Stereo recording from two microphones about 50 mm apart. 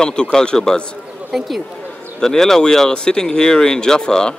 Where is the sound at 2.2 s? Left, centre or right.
Centre.